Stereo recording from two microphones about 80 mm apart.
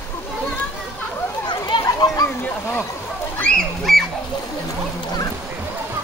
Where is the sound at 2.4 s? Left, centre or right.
Left.